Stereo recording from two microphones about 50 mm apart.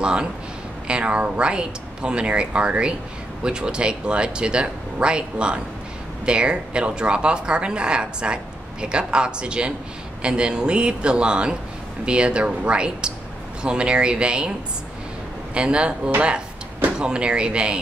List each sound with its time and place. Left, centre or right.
0.0 s a man's voice: centre
15.5 s speech: right